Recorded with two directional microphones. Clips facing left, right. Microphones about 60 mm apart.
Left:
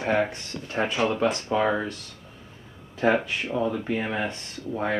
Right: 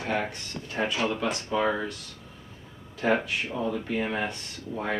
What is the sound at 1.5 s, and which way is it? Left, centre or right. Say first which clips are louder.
Speech: even; centre.